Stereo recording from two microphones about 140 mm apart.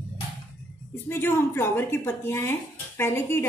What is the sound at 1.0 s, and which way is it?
A woman's voice, 15° left (ahead or behind).